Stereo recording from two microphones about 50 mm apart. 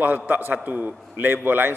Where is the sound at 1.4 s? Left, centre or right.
Right.